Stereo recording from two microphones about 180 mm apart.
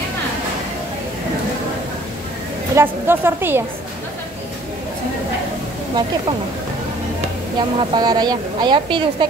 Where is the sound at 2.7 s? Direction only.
10° right (ahead or behind).